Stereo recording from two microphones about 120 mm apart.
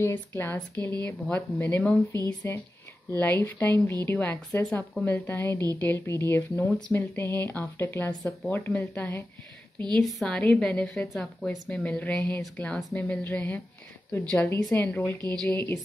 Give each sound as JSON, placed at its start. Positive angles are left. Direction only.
{"t": 0.0, "sound": "speech", "side_deg": 15}
{"t": 9.9, "sound": "speech", "side_deg": 5}
{"t": 15.1, "sound": "a woman's voice", "side_deg": -35}
{"t": 15.5, "sound": "speech", "side_deg": 20}